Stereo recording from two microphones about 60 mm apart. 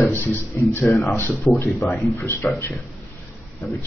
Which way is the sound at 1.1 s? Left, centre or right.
Left.